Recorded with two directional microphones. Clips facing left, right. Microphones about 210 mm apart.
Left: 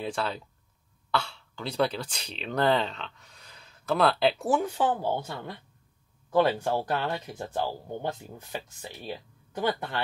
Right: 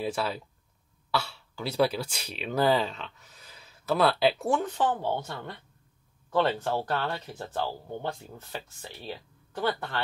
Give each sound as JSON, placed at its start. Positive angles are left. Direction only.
{"t": 0.0, "sound": "speech", "side_deg": -5}